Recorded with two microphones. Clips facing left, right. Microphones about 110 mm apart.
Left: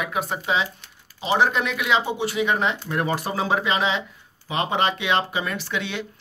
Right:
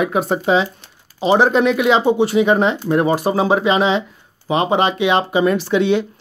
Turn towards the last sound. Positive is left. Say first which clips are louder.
# right 13 dB
turn(degrees=-25)  # may be behind; listen again after turning